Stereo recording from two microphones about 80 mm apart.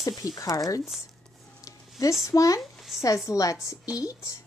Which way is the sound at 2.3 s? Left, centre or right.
Left.